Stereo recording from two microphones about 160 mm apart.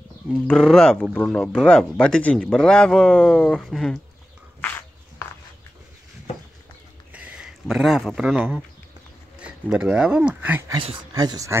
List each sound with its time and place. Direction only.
0.3 s speech: 5° left (ahead or behind)
7.1 s speech: 10° right (ahead or behind)
11.1 s speech: 25° right (ahead or behind)